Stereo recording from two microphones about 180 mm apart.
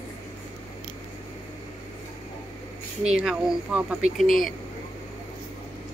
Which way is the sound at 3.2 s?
5° right (ahead or behind).